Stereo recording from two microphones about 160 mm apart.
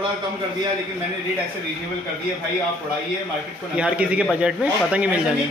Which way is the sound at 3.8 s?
10° right (ahead or behind).